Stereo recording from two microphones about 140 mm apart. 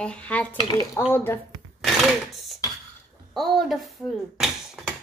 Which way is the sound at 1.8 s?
Centre (ahead or behind).